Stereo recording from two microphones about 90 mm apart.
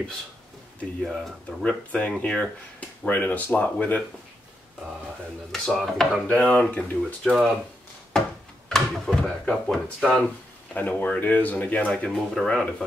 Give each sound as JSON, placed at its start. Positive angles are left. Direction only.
{"t": 1.0, "sound": "speech", "side_deg": 5}
{"t": 5.5, "sound": "speech", "side_deg": 0}
{"t": 6.2, "sound": "speech", "side_deg": 15}
{"t": 8.1, "sound": "a sound", "side_deg": 5}
{"t": 8.6, "sound": "speech", "side_deg": 5}
{"t": 10.2, "sound": "speech", "side_deg": 15}